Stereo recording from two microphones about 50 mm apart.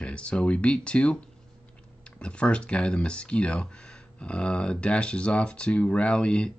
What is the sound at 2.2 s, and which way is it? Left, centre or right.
Speech, left.